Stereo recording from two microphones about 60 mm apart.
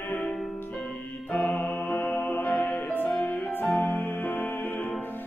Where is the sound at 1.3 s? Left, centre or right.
Left.